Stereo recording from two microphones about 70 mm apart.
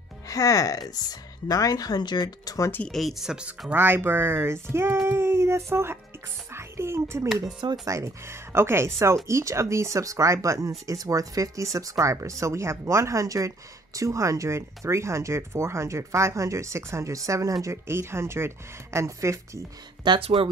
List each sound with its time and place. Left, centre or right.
0.3 s speech: left
2.9 s speech: centre
3.7 s speech: right
5.0 s a sound: right
6.5 s music: right
7.8 s speech: right
17.8 s speech: right
20.1 s speech: right